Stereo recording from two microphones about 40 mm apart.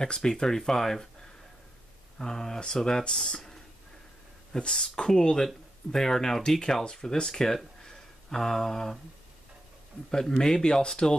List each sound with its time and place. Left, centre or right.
0.0 s speech: centre
2.1 s speech: centre
4.5 s speech: left
10.4 s speech: centre